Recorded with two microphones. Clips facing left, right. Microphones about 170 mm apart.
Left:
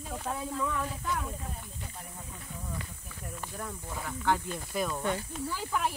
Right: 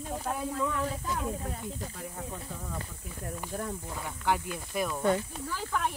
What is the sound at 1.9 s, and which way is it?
Speech, 90° right.